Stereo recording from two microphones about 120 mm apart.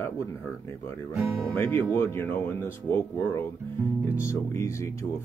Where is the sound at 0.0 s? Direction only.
25° left (ahead or behind).